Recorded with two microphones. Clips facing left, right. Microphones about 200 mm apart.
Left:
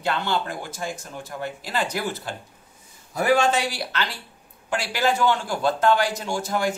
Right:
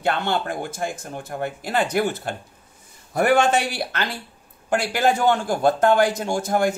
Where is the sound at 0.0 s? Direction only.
55° right (ahead or behind).